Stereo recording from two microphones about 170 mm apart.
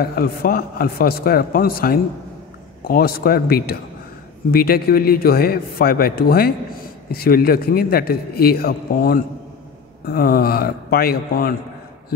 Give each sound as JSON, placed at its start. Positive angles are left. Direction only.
{"t": 0.0, "sound": "a man's voice", "side_deg": 60}